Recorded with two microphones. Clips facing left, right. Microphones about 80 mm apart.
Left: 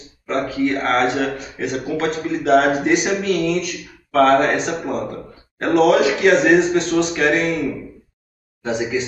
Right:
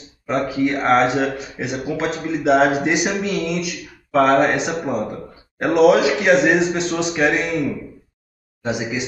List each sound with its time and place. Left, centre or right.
0.3 s speech: centre
4.1 s speech: centre
4.6 s a man's voice: centre
8.6 s speech: centre